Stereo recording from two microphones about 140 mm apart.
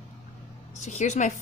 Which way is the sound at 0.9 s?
55° left (ahead or behind).